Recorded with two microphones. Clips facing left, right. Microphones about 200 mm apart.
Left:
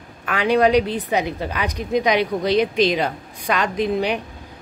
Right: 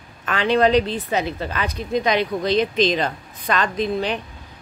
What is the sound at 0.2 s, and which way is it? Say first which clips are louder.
A man's voice: left 1 dB; 10° left (ahead or behind).